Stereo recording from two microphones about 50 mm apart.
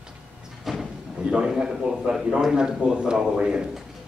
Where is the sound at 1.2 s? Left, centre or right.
Centre.